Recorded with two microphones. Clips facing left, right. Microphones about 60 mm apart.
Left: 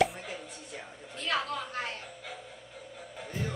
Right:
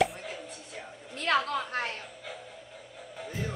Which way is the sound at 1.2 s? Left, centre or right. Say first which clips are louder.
Right 5 dB; right.